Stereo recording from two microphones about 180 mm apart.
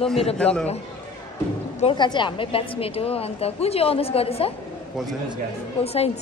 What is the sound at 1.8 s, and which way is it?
A woman's voice, 25° left (ahead or behind).